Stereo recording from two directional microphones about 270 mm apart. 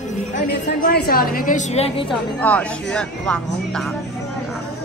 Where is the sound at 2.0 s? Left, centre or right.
Centre.